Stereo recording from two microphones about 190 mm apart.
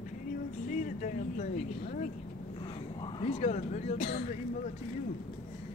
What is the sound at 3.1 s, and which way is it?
Speech, 30° left (ahead or behind).